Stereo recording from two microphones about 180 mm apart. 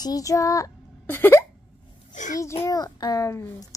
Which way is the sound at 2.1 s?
45° left (ahead or behind).